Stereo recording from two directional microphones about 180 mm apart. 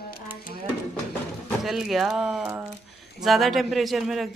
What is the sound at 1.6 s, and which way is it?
Speech, centre (ahead or behind).